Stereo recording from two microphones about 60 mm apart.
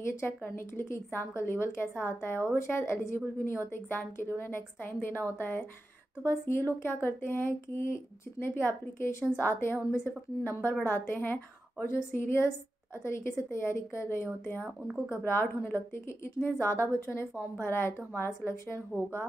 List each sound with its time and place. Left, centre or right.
0.0 s a woman's voice: left
11.8 s a woman's voice: left